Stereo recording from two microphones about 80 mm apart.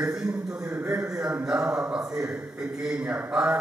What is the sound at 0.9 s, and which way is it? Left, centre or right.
A man's voice, centre.